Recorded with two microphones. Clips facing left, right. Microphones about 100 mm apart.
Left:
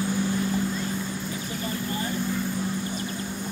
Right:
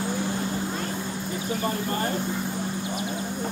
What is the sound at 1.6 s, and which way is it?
Vehicle, 50° right (ahead or behind).